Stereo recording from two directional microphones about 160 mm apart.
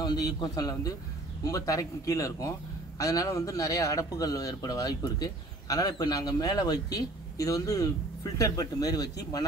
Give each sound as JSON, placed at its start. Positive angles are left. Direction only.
{"t": 0.0, "sound": "a man's voice", "side_deg": 25}